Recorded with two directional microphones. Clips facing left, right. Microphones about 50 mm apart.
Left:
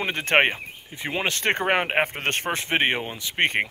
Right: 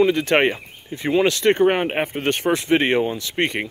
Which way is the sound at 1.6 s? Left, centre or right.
Left.